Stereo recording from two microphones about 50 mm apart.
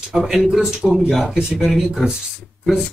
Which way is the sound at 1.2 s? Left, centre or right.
Centre.